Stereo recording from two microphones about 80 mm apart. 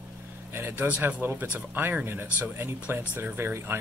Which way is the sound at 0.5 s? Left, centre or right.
Right.